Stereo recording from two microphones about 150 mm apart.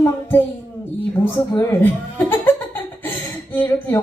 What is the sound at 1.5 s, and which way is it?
Laughter, 15° left (ahead or behind).